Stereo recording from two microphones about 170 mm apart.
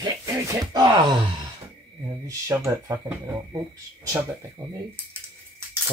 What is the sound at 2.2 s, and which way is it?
Speech, 15° right (ahead or behind).